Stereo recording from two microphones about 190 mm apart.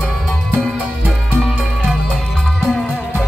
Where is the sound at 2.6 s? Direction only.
Centre (ahead or behind).